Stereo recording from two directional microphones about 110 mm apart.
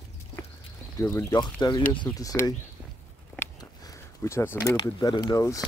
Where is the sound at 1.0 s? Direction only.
30° left (ahead or behind); by 2.1 s 45° left (ahead or behind).